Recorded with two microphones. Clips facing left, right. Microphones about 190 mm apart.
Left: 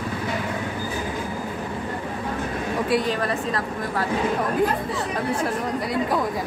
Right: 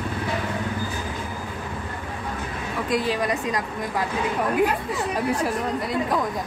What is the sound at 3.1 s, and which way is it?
Speech, 15° right (ahead or behind).